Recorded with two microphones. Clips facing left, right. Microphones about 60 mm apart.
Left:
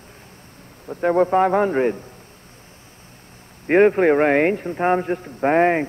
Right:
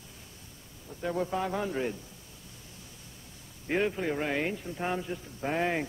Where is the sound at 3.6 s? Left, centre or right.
Left.